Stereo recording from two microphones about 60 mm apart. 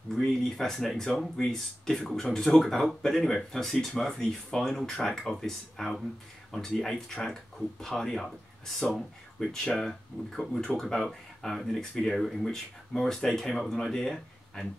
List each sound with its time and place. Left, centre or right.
0.1 s speech: centre